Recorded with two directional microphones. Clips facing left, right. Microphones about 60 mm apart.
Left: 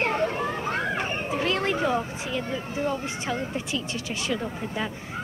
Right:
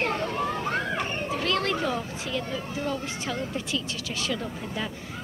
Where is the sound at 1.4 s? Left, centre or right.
Left.